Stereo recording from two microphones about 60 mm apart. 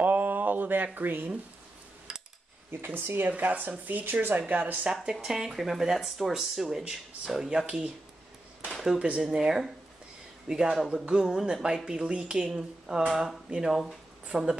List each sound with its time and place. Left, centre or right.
0.0 s a sound: right
0.9 s speech: right
2.7 s speech: right
5.1 s speech: centre
8.7 s a sound: centre
9.3 s speech: centre